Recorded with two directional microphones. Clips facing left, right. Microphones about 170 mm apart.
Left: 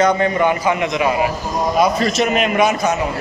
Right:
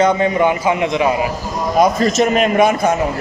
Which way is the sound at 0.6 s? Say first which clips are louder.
Right 2 dB; 25° right (ahead or behind).